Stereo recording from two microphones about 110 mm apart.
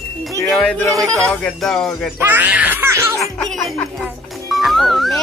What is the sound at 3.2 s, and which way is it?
Music, centre (ahead or behind).